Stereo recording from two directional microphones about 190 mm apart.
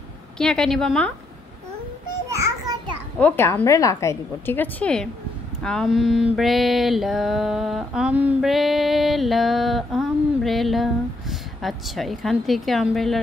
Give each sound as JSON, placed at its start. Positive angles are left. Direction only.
{"t": 0.4, "sound": "mantra", "side_deg": 5}
{"t": 2.2, "sound": "a sound", "side_deg": -15}
{"t": 3.2, "sound": "a woman's voice", "side_deg": 10}
{"t": 5.6, "sound": "mantra", "side_deg": 5}